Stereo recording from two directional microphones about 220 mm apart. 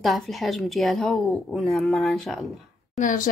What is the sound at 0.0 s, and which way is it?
A woman's voice, centre (ahead or behind).